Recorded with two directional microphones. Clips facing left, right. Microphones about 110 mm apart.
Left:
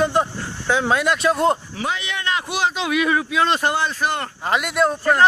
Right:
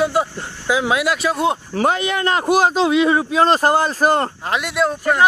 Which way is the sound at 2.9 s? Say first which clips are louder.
Right 4 dB; 30° right (ahead or behind).